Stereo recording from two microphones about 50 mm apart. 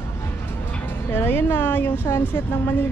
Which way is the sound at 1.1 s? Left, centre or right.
Left.